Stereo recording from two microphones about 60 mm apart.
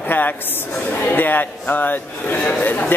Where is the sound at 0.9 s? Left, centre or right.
Left.